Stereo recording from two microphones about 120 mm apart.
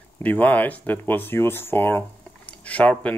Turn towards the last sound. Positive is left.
turn(degrees=10)  # may be behind; listen again after turning